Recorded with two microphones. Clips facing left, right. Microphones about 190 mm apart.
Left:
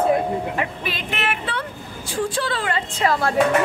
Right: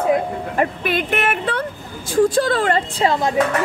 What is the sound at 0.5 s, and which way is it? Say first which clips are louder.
Speech: right 7 dB; 50° right (ahead or behind).